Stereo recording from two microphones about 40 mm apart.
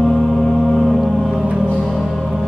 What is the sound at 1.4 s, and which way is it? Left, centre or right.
Music, right.